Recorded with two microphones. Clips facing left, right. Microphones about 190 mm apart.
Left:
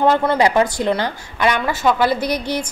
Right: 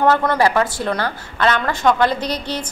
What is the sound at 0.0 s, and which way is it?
A woman's voice, 15° left (ahead or behind).